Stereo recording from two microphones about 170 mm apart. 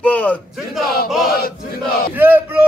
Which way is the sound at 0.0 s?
10° left (ahead or behind).